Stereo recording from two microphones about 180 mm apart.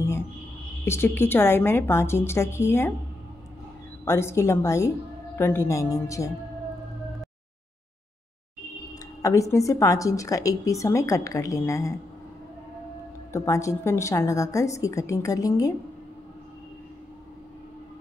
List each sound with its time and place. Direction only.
0.8 s a woman's voice: 15° left (ahead or behind)
4.0 s a woman's voice: 15° left (ahead or behind)
9.2 s a woman's voice: 15° left (ahead or behind)
13.3 s a woman's voice: 15° left (ahead or behind)